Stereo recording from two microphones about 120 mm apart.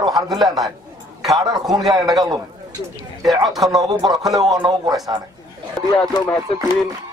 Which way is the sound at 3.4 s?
Centre (ahead or behind).